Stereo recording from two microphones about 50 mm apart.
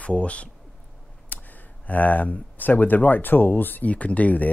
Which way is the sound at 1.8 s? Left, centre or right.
Left.